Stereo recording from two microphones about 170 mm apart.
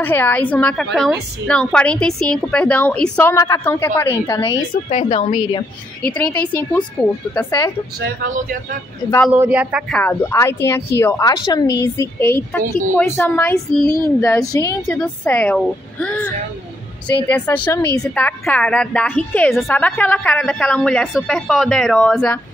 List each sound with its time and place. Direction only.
0.0 s a woman's voice: 10° left (ahead or behind)
4.9 s a woman's voice: 35° left (ahead or behind)
6.0 s a woman's voice: 5° left (ahead or behind)
9.3 s a woman's voice: 10° right (ahead or behind)